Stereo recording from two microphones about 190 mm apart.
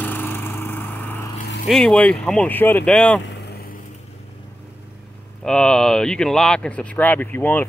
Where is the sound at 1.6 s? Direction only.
5° left (ahead or behind).